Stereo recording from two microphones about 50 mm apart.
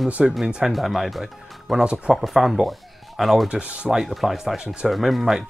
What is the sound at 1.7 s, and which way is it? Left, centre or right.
Speech, centre.